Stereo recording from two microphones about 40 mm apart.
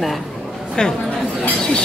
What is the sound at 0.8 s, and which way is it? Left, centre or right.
Speech, left.